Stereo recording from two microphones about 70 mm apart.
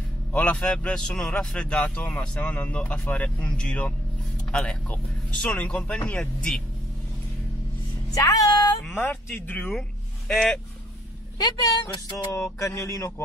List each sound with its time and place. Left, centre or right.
0.3 s speech: centre
8.1 s a sound: left
8.8 s speech: left
9.8 s speech: centre
11.3 s a woman's voice: left
12.5 s speech: left